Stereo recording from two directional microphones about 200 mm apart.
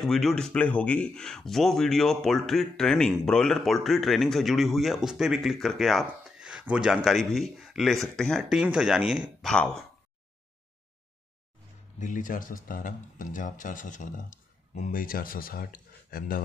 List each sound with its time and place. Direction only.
0.0 s speech: centre (ahead or behind)
12.0 s speech: 40° left (ahead or behind)